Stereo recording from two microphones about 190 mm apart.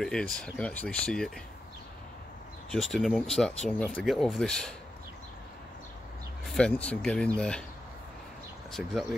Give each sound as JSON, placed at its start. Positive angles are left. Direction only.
{"t": 0.0, "sound": "speech", "side_deg": 5}
{"t": 2.7, "sound": "speech", "side_deg": 0}
{"t": 6.4, "sound": "speech", "side_deg": 5}
{"t": 8.8, "sound": "speech", "side_deg": 0}